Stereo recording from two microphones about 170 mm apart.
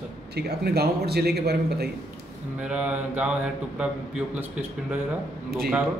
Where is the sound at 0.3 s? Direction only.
75° right (ahead or behind).